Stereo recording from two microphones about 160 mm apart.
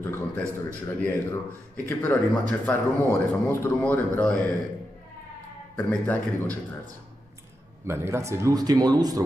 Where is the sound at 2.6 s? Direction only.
10° left (ahead or behind).